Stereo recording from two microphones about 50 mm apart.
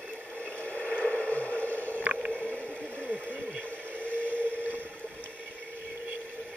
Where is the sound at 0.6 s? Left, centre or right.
Left.